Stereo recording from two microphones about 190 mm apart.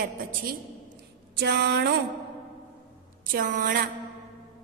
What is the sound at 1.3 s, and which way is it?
Music, 60° right (ahead or behind).